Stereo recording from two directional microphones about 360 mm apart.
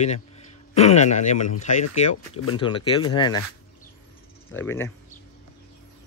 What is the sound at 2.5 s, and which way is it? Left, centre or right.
Speech, centre.